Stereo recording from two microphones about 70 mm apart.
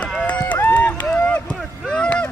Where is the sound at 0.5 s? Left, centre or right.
Left.